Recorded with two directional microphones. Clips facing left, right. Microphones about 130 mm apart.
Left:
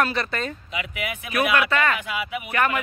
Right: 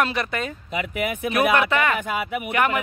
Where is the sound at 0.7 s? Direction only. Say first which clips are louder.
Right 5 dB; 50° right (ahead or behind).